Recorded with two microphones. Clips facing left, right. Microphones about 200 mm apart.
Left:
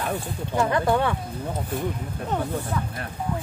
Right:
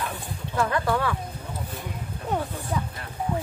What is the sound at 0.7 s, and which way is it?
Speech, 25° left (ahead or behind).